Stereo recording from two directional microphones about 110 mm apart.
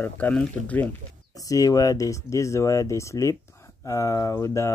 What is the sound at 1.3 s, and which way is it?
Speech, 30° left (ahead or behind).